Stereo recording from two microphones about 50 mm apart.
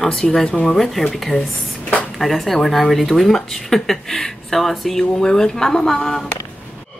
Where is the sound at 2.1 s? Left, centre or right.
Centre.